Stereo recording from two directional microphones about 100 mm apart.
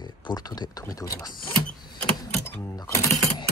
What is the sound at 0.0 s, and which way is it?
Speech, 40° left (ahead or behind).